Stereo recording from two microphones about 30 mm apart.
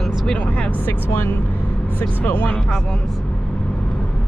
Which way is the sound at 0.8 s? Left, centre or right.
Left.